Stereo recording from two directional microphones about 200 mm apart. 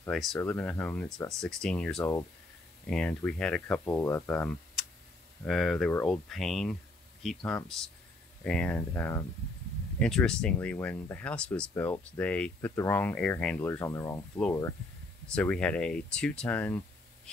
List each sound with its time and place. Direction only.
0.0 s speech: centre (ahead or behind)